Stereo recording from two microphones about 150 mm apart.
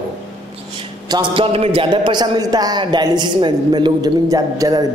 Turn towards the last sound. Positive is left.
turn(degrees=-25)  # may be behind; listen again after turning